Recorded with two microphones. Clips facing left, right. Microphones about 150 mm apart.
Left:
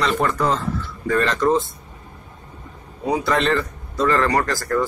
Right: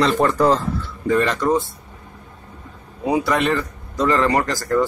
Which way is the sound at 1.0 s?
15° right (ahead or behind).